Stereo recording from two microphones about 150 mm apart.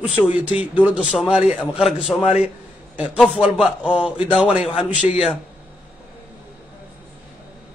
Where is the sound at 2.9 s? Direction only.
10° right (ahead or behind).